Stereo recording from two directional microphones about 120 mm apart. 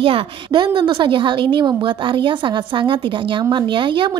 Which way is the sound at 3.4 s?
40° right (ahead or behind).